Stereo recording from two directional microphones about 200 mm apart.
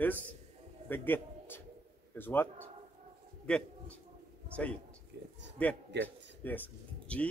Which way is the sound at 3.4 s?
5° left (ahead or behind).